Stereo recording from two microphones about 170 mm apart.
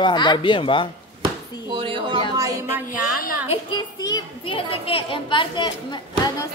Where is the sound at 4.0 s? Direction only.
20° left (ahead or behind).